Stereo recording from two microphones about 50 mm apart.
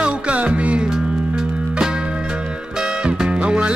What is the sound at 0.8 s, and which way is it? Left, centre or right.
Music, centre.